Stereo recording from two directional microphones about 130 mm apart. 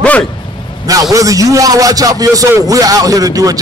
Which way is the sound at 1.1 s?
25° right (ahead or behind).